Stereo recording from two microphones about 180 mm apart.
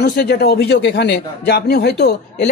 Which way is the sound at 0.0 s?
65° left (ahead or behind).